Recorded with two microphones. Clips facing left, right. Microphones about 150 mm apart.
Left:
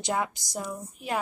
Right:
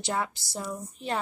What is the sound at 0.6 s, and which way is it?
Speech, 5° left (ahead or behind).